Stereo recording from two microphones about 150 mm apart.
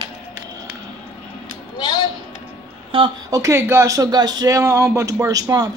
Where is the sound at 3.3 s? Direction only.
20° right (ahead or behind).